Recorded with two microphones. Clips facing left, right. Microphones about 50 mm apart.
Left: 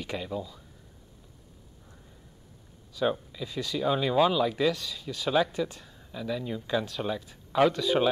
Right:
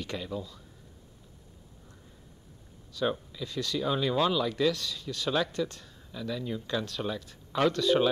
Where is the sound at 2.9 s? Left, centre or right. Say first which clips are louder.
Left 2 dB; centre.